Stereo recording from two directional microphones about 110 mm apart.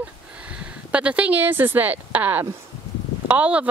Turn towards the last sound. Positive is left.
turn(degrees=-15)  # may be behind; listen again after turning